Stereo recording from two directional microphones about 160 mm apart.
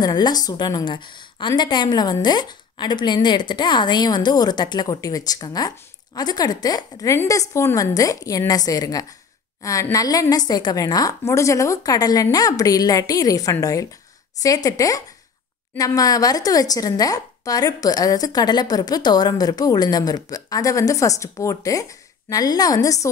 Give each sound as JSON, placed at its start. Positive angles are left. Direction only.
{"t": 0.0, "sound": "a woman's voice", "side_deg": 25}